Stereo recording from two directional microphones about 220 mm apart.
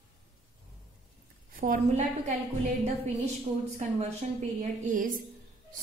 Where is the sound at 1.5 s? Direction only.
40° right (ahead or behind).